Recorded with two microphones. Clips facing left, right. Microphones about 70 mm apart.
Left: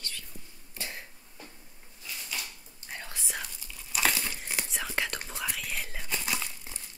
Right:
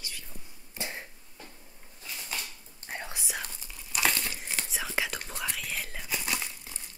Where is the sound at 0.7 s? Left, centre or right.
Right.